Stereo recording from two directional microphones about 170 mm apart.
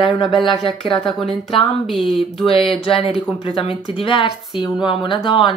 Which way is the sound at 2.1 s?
30° left (ahead or behind).